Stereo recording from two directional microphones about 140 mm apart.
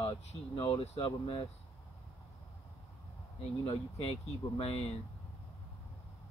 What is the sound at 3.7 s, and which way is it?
Speech, 45° left (ahead or behind).